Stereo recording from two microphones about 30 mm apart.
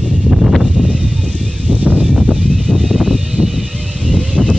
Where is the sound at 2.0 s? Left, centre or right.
Right.